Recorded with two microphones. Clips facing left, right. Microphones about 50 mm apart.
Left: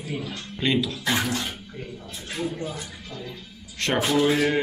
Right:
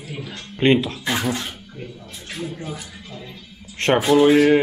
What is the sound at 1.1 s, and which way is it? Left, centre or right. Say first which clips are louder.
Speech: right 2 dB; right.